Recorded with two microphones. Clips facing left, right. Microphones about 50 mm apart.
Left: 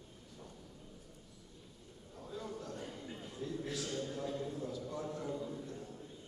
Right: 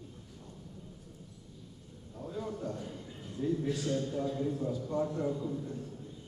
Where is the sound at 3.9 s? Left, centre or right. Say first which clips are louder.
Right 6 dB; right.